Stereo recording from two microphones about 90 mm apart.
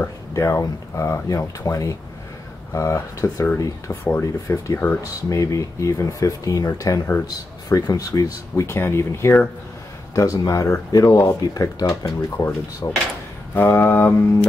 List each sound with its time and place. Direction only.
0.3 s speech: 35° left (ahead or behind)
5.4 s speech: 35° left (ahead or behind)
8.7 s speech: 30° left (ahead or behind)
13.6 s speech: 20° left (ahead or behind)